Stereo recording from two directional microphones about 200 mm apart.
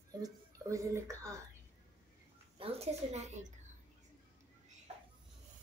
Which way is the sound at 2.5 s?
30° right (ahead or behind).